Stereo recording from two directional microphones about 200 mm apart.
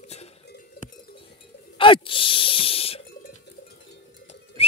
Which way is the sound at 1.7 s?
25° left (ahead or behind).